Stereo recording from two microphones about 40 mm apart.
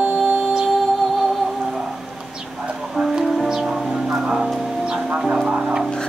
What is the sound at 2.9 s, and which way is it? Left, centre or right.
Music, centre.